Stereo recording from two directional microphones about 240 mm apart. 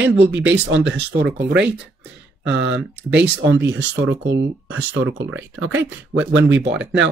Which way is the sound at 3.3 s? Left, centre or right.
Right.